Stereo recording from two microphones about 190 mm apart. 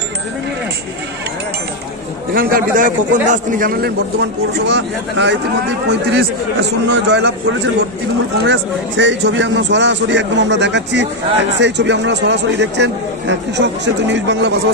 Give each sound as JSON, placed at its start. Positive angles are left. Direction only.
{"t": 2.3, "sound": "a man's voice", "side_deg": -45}
{"t": 4.6, "sound": "speech", "side_deg": -70}